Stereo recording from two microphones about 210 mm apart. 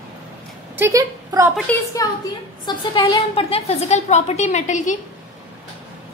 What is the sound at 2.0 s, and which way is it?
A woman's voice, 15° left (ahead or behind).